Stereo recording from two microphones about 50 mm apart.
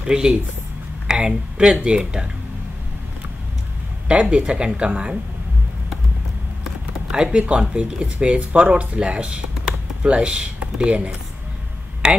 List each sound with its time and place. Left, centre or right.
0.0 s speech: centre
4.1 s speech: right
6.6 s typing: centre
7.3 s speech: right